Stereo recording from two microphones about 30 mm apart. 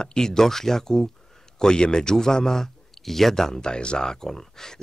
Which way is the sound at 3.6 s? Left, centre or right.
Left.